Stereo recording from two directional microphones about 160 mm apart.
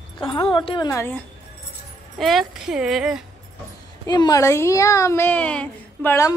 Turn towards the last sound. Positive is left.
turn(degrees=15)  # may be behind; listen again after turning